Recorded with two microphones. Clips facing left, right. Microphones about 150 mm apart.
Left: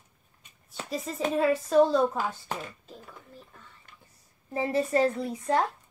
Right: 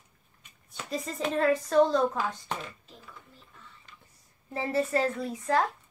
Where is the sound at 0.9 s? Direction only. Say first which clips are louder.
Left 1 dB; centre (ahead or behind).